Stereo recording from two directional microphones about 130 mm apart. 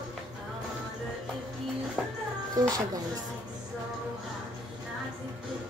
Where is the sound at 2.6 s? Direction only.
30° right (ahead or behind).